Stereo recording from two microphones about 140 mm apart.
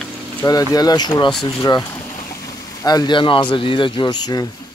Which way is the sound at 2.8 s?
30° left (ahead or behind).